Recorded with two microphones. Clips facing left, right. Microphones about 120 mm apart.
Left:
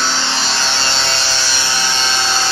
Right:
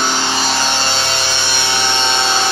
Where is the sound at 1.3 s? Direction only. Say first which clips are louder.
Right 2 dB; 20° right (ahead or behind).